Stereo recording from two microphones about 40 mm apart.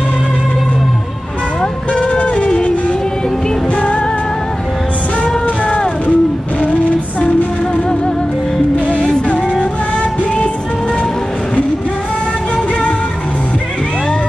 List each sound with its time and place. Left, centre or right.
1.9 s music: left
5.6 s music: left
6.6 s child singing: left